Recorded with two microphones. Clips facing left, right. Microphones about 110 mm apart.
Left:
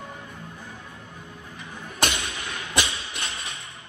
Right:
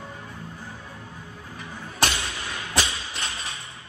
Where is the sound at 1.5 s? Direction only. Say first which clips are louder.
Right 2 dB; 20° left (ahead or behind).